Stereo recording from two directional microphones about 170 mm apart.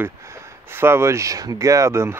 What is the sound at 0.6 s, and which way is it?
Speech, 15° right (ahead or behind).